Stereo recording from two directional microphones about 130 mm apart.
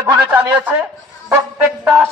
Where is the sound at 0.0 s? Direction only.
15° right (ahead or behind).